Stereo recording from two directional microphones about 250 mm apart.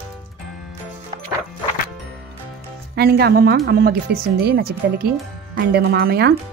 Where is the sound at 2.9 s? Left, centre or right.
Right.